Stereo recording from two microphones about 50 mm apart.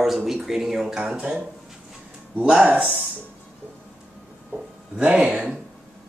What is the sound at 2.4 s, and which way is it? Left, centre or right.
Speech, centre.